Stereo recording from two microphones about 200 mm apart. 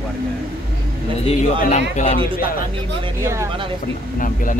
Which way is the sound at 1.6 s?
35° left (ahead or behind).